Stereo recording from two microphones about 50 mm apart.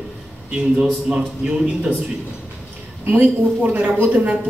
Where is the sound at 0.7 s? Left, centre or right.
Centre.